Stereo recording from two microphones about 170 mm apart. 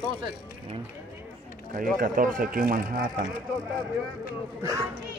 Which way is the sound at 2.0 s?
50° right (ahead or behind).